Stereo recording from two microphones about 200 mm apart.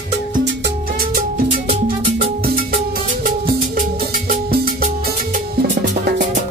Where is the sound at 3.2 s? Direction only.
45° right (ahead or behind).